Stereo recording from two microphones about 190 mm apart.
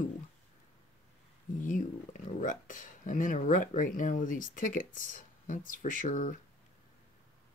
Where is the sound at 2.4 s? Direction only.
45° left (ahead or behind).